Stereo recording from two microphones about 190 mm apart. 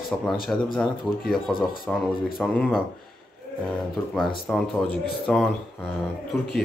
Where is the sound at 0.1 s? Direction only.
5° left (ahead or behind).